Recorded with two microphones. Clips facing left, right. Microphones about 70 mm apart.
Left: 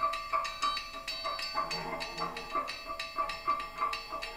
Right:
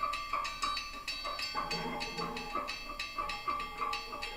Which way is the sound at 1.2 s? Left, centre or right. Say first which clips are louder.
Left 3 dB; left.